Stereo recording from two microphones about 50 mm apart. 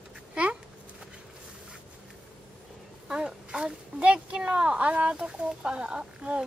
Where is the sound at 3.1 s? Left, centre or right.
Centre.